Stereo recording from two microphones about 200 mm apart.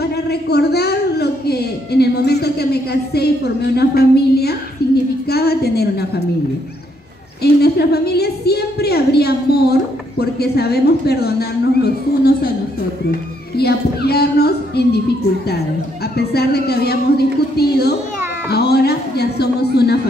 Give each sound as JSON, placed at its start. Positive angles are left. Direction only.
{"t": 0.0, "sound": "a woman's voice", "side_deg": 55}
{"t": 7.6, "sound": "a woman's voice", "side_deg": 55}
{"t": 13.6, "sound": "a woman's voice", "side_deg": 55}
{"t": 16.2, "sound": "a woman's voice", "side_deg": 55}